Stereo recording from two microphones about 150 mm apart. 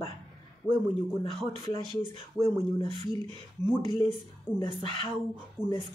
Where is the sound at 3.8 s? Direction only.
35° left (ahead or behind).